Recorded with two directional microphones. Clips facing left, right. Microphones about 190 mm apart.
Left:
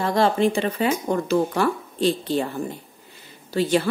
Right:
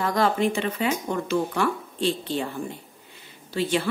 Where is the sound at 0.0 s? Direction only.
30° left (ahead or behind).